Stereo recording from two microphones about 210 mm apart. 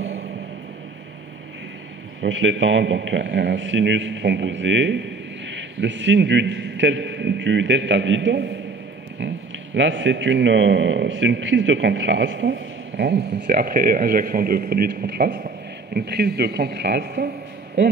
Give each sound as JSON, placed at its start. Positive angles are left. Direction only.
{"t": 2.2, "sound": "a man's voice", "side_deg": -60}
{"t": 9.2, "sound": "a sound", "side_deg": -60}
{"t": 9.8, "sound": "a man's voice", "side_deg": -60}